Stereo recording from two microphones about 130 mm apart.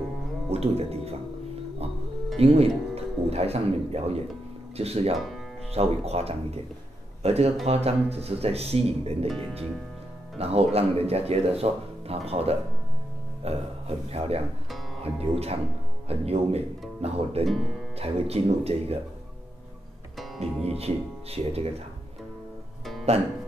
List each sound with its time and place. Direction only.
0.5 s speech: 50° right (ahead or behind)
2.3 s speech: 50° right (ahead or behind)
5.1 s speech: centre (ahead or behind)
5.7 s speech: 50° right (ahead or behind)
10.3 s speech: 50° right (ahead or behind)
17.5 s speech: centre (ahead or behind)
17.9 s speech: 50° right (ahead or behind)
20.6 s speech: 50° right (ahead or behind)
23.1 s speech: 50° right (ahead or behind)